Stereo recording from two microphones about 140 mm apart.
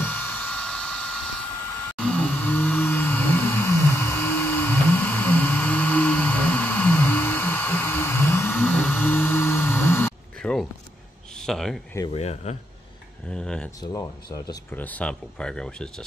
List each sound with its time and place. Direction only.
0.0 s hair dryer: 10° left (ahead or behind)
2.0 s vehicle: 10° left (ahead or behind)
11.4 s a sound: centre (ahead or behind)
12.1 s speech: 50° left (ahead or behind)
13.3 s speech: 5° left (ahead or behind)
13.7 s speech: 25° left (ahead or behind)
14.7 s speech: 10° left (ahead or behind)